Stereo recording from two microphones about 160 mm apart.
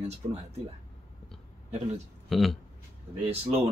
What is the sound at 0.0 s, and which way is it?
Speech, 40° right (ahead or behind).